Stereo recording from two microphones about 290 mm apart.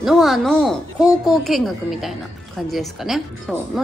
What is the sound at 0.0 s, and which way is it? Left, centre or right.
A woman's voice, centre.